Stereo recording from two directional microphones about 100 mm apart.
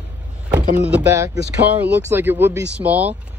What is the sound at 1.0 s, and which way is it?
Speech, 30° right (ahead or behind).